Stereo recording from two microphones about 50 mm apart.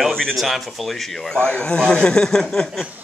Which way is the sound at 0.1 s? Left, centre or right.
Centre.